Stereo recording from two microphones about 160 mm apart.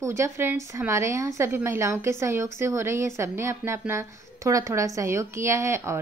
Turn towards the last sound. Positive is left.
turn(degrees=-15)  # may be behind; listen again after turning